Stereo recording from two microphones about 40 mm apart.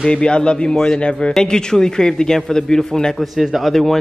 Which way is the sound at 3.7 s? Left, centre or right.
Centre.